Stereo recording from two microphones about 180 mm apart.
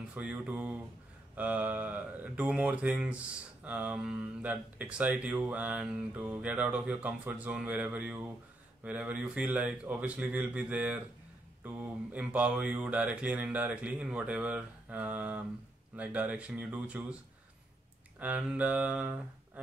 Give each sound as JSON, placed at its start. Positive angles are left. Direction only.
{"t": 0.1, "sound": "speech", "side_deg": -10}
{"t": 18.2, "sound": "speech", "side_deg": -10}